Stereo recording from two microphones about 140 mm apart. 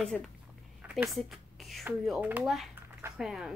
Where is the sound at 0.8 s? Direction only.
5° right (ahead or behind).